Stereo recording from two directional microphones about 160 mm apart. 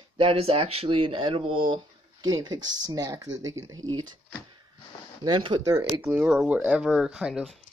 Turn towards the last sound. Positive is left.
turn(degrees=-5)  # may be behind; listen again after turning